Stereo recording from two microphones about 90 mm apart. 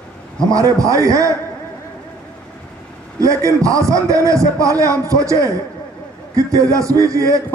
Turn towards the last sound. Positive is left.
turn(degrees=-35)  # may be behind; listen again after turning